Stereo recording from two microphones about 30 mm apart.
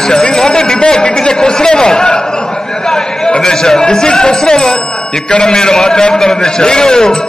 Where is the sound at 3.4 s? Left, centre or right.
Centre.